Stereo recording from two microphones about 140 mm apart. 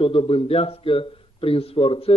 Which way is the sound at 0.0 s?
40° left (ahead or behind).